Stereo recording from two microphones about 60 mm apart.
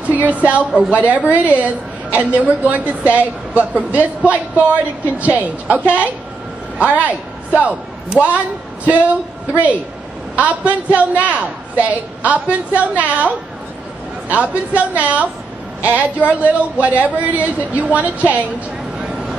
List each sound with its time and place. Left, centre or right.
0.1 s a woman's voice: right
9.5 s a woman's voice: right
14.3 s a woman's voice: right